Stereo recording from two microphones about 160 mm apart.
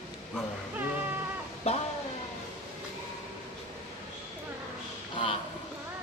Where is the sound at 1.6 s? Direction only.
40° left (ahead or behind).